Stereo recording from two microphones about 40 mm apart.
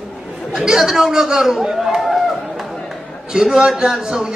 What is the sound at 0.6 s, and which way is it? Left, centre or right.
A man's voice, centre.